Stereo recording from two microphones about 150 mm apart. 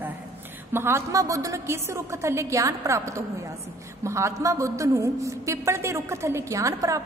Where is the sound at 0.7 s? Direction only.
15° right (ahead or behind).